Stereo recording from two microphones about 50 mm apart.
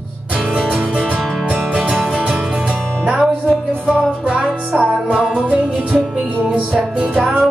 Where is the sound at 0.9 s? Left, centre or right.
Right.